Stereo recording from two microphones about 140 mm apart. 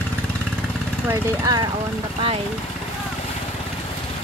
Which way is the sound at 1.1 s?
20° right (ahead or behind).